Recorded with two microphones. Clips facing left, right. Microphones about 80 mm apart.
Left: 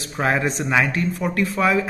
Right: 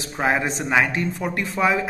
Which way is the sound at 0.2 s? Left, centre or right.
Centre.